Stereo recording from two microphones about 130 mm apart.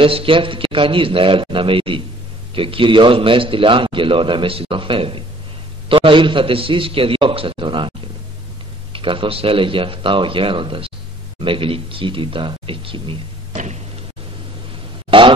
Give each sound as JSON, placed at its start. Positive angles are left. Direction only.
{"t": 0.0, "sound": "a man's voice", "side_deg": -45}
{"t": 8.9, "sound": "speech", "side_deg": -40}
{"t": 15.0, "sound": "a sound", "side_deg": -40}